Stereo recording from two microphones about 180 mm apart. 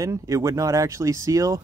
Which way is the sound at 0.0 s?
20° right (ahead or behind).